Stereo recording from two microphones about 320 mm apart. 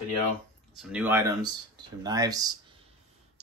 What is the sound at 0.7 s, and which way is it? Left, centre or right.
Speech, centre.